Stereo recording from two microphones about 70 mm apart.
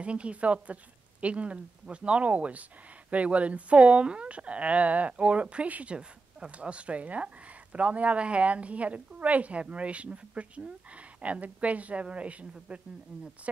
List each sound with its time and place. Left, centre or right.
0.0 s speech: centre